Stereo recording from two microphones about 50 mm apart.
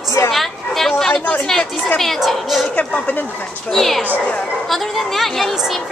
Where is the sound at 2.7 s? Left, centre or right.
Left.